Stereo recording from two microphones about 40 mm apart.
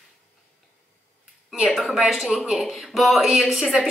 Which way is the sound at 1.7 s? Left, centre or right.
Centre.